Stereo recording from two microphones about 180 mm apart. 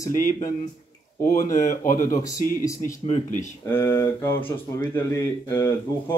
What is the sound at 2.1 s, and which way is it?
Speech, 20° left (ahead or behind).